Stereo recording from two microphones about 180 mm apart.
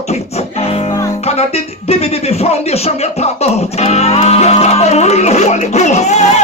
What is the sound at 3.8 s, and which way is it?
Music, 35° left (ahead or behind).